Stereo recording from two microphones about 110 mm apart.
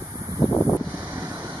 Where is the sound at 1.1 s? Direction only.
15° right (ahead or behind).